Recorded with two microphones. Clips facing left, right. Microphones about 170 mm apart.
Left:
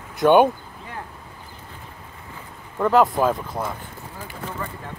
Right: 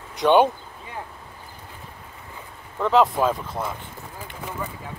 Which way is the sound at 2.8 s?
Centre (ahead or behind).